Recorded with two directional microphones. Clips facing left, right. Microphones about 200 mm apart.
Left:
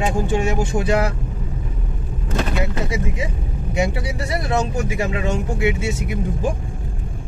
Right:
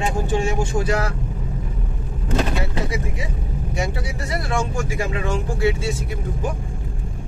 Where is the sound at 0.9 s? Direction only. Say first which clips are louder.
Left 3 dB; 25° left (ahead or behind).